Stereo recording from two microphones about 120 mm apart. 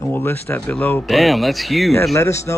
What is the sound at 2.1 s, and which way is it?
Speech, 25° left (ahead or behind).